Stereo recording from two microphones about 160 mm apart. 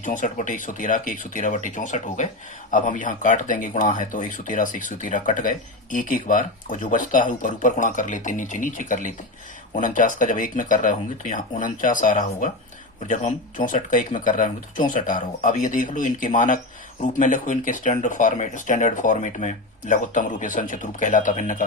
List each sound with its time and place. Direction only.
0.0 s speech: 55° left (ahead or behind)